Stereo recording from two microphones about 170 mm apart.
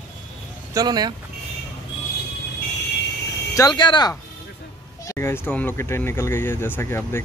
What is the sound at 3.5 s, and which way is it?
Speech, 20° left (ahead or behind).